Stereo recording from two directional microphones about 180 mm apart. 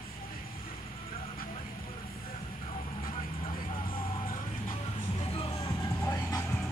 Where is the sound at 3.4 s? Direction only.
30° left (ahead or behind).